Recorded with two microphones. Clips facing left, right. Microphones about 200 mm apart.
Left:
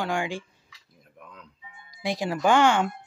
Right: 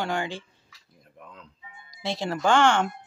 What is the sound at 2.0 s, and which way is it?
Speech, 15° left (ahead or behind).